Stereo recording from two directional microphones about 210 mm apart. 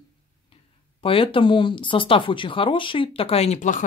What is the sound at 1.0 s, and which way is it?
Speech, 25° left (ahead or behind).